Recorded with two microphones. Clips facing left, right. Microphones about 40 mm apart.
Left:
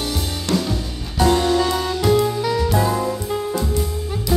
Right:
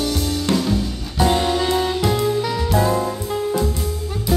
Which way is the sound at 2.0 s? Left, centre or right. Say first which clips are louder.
Left 2 dB; centre.